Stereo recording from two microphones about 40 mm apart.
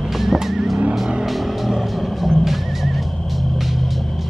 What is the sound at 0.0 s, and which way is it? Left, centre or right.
Vehicle, centre.